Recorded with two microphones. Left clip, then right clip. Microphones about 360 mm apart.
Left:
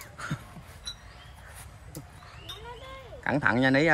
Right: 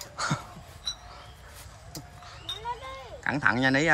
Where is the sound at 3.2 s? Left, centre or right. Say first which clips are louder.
Even; centre.